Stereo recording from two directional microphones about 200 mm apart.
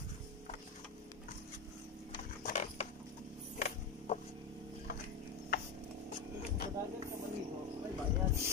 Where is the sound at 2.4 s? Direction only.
35° left (ahead or behind).